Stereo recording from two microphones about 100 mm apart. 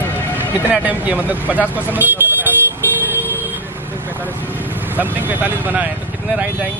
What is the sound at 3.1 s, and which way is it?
Vehicle, 20° right (ahead or behind).